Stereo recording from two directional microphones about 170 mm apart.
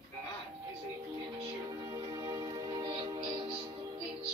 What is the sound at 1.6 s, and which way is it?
Music, 20° right (ahead or behind).